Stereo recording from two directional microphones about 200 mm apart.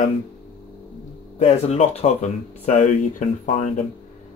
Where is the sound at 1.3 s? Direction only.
30° left (ahead or behind).